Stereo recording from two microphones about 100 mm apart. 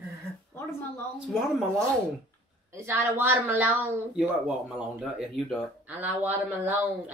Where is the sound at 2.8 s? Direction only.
20° right (ahead or behind).